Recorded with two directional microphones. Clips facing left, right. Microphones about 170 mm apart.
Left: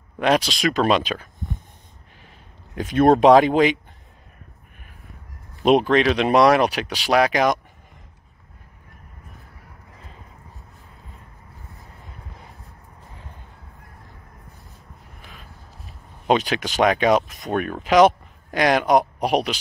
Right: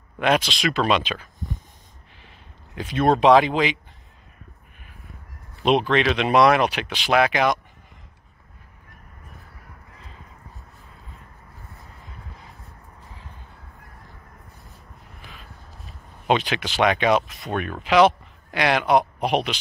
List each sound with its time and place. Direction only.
0.2 s speech: 35° left (ahead or behind)
2.7 s speech: 45° left (ahead or behind)
5.6 s speech: 45° left (ahead or behind)
16.3 s speech: 40° left (ahead or behind)